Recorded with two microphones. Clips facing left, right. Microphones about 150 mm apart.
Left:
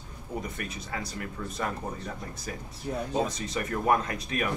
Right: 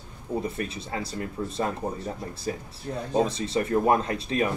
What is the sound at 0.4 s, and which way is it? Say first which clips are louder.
Speech: right 5 dB; 30° right (ahead or behind).